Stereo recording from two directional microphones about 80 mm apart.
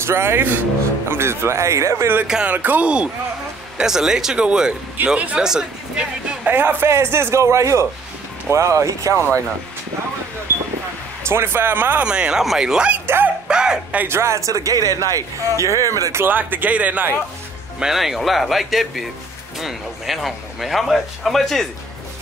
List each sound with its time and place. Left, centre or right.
0.0 s a man's voice: right
2.2 s speech: centre
2.5 s speech: right
6.4 s a man's voice: right
11.2 s speech: right
12.0 s speech: centre
13.0 s dog: right
13.5 s speech: centre
14.0 s a man's voice: right
16.3 s speech: right
17.7 s speech: centre